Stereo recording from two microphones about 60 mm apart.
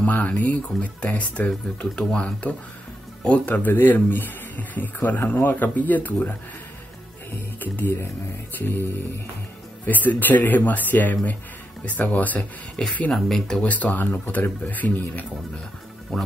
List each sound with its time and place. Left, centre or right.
0.0 s speech: left
7.6 s speech: left
9.8 s speech: left
12.8 s speech: centre
13.6 s speech: left
16.1 s speech: centre